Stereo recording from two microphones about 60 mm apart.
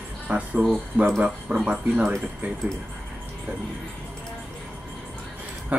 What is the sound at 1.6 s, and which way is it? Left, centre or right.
Speech, right.